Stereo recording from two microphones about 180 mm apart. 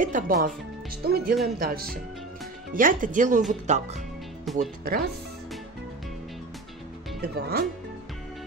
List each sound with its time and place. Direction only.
0.0 s speech: 45° right (ahead or behind)
1.0 s speech: 60° right (ahead or behind); by 4.0 s 40° right (ahead or behind)
4.5 s speech: centre (ahead or behind)
4.8 s speech: 60° right (ahead or behind)
7.2 s speech: 60° right (ahead or behind)